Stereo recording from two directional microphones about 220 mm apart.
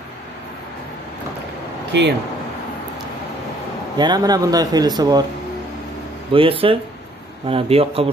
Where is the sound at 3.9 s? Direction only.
20° right (ahead or behind).